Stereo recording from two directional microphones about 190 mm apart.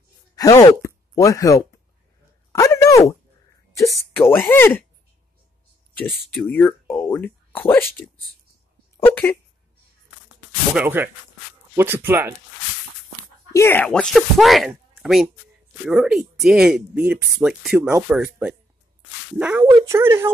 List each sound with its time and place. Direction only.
0.4 s speech: 20° left (ahead or behind)
2.5 s a sound: 15° left (ahead or behind)
3.7 s speech: 15° left (ahead or behind)
6.3 s speech: 10° left (ahead or behind)
8.9 s speech: 10° left (ahead or behind)
10.7 s a woman's voice: 10° right (ahead or behind)
13.5 s a woman's voice: 15° left (ahead or behind); by 20.3 s 15° right (ahead or behind)